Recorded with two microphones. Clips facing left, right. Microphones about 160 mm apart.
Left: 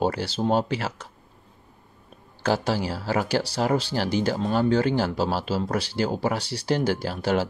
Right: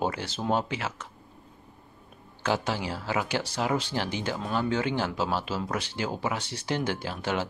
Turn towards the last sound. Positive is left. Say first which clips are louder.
# left 6 dB
turn(degrees=35)  # may be behind; listen again after turning